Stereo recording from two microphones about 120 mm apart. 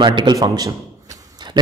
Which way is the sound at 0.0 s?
40° right (ahead or behind).